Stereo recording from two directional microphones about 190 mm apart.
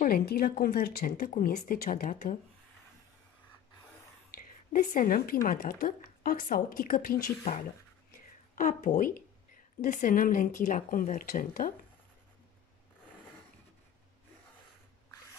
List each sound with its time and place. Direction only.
0.0 s a woman's voice: 55° left (ahead or behind)
4.3 s a woman's voice: 45° left (ahead or behind)
8.1 s a sound: 45° left (ahead or behind)
9.8 s a woman's voice: 40° left (ahead or behind)